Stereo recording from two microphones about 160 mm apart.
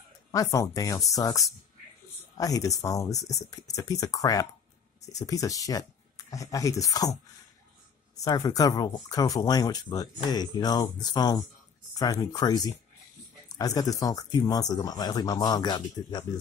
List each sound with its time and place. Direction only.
0.3 s speech: 20° left (ahead or behind)
8.2 s speech: 25° left (ahead or behind)